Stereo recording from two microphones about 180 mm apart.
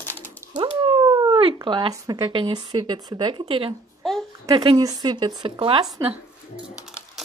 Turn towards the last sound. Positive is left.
turn(degrees=-30)  # may be behind; listen again after turning